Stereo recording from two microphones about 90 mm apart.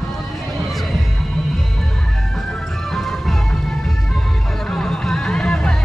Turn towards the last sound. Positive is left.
turn(degrees=10)  # may be behind; listen again after turning